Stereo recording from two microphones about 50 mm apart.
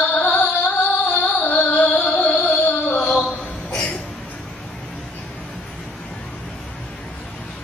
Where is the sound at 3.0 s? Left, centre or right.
Centre.